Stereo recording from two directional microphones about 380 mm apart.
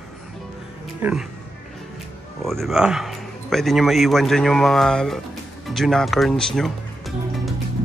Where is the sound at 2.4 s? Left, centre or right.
Centre.